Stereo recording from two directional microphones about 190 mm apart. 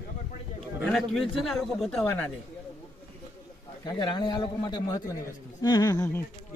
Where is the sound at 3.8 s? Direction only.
25° left (ahead or behind).